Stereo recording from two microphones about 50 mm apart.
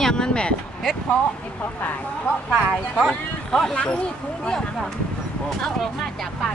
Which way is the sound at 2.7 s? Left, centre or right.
Centre.